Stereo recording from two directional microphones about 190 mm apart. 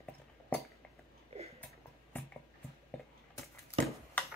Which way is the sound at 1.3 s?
35° right (ahead or behind).